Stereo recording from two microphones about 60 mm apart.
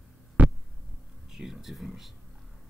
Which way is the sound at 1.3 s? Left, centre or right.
Centre.